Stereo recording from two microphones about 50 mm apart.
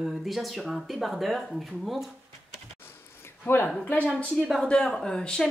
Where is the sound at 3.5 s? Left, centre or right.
Left.